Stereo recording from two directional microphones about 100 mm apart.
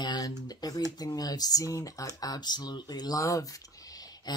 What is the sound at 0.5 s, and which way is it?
Speech, 40° left (ahead or behind).